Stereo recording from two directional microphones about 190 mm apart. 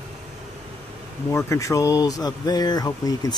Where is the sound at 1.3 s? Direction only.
15° left (ahead or behind).